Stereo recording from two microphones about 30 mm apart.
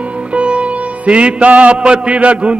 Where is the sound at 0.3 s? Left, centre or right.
Right.